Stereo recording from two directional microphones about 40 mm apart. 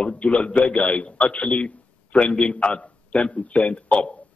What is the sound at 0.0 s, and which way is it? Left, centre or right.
A man's voice, left.